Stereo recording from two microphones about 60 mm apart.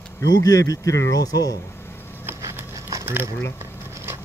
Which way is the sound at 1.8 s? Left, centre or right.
Left.